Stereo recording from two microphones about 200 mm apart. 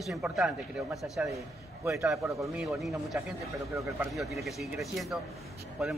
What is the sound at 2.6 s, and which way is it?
A man's voice, centre (ahead or behind).